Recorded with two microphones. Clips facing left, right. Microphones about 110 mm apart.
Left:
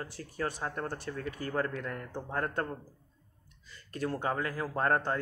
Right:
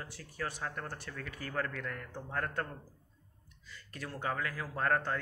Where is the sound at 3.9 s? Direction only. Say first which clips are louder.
Left 5 dB; 30° left (ahead or behind).